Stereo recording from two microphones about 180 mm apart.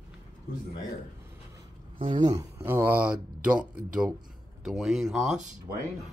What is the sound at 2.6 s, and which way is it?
Speech, 10° right (ahead or behind).